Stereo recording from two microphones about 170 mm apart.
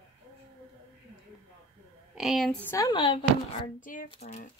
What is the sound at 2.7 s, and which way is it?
Speech, 20° left (ahead or behind).